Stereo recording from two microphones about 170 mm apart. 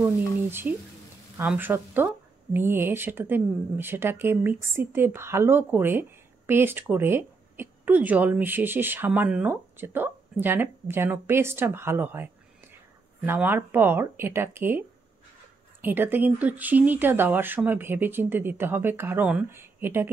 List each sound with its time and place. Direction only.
0.0 s speech: 10° right (ahead or behind)